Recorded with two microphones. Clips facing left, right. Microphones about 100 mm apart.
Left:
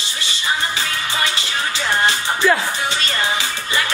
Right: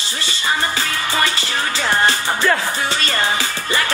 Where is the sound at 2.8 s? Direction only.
40° right (ahead or behind).